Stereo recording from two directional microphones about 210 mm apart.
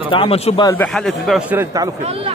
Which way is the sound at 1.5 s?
15° right (ahead or behind).